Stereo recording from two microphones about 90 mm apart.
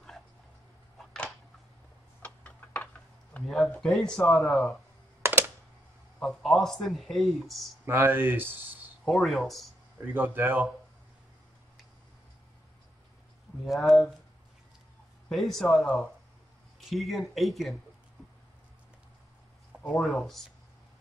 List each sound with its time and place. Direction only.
0.9 s a sound: 10° left (ahead or behind)
2.2 s tick-tock: 15° left (ahead or behind)
3.3 s speech: 5° left (ahead or behind)
6.2 s speech: centre (ahead or behind)
7.8 s speech: 25° right (ahead or behind)
9.0 s speech: centre (ahead or behind)
9.9 s speech: 25° right (ahead or behind)
13.7 s speech: centre (ahead or behind)
15.2 s speech: 5° left (ahead or behind)
16.9 s speech: centre (ahead or behind)
19.9 s speech: centre (ahead or behind)